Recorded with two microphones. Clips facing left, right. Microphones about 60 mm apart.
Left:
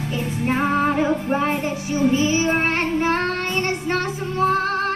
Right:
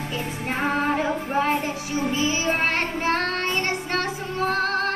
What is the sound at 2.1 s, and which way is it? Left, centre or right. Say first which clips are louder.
Child singing: left 5 dB; left.